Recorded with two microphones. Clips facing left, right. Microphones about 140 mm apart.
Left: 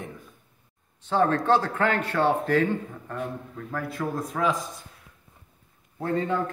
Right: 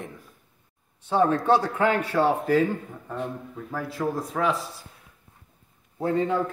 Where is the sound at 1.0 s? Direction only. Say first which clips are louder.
Right 1 dB; 10° right (ahead or behind).